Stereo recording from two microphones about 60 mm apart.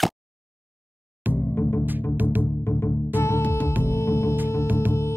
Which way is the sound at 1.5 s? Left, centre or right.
Left.